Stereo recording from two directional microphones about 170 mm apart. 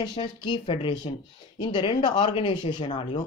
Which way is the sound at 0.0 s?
25° left (ahead or behind).